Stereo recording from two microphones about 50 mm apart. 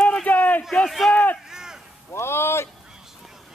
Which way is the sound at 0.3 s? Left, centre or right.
Left.